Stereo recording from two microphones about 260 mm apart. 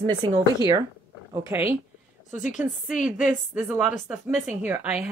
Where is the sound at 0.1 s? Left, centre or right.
Centre.